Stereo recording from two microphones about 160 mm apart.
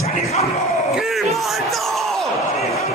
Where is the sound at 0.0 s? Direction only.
40° left (ahead or behind).